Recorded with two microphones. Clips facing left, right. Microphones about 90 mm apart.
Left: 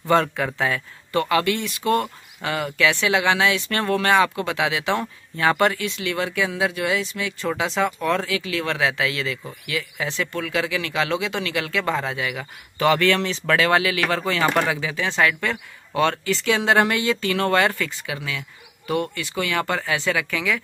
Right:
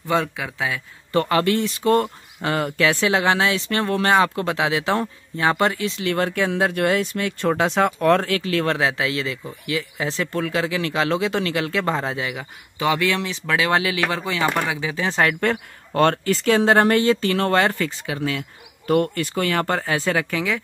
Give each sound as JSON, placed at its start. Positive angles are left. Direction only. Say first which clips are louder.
{"t": 0.1, "sound": "speech", "louder": "left 3 dB", "side_deg": -5}
{"t": 1.1, "sound": "speech", "louder": "right 2 dB", "side_deg": -35}
{"t": 6.1, "sound": "speech", "louder": "right 3 dB", "side_deg": -45}
{"t": 13.7, "sound": "speech", "louder": "left 1 dB", "side_deg": -25}
{"t": 15.0, "sound": "speech", "louder": "right 2 dB", "side_deg": -40}